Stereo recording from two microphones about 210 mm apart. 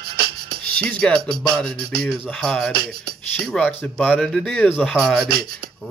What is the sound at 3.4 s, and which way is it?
Speech, 5° left (ahead or behind).